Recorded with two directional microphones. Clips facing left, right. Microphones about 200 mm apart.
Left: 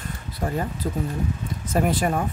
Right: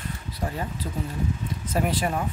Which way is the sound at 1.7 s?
45° left (ahead or behind).